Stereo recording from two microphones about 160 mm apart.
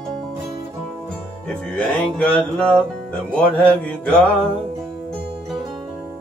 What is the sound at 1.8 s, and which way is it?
Mantra, 5° left (ahead or behind).